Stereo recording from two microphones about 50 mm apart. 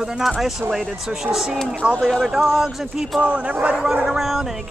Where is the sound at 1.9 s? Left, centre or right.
Centre.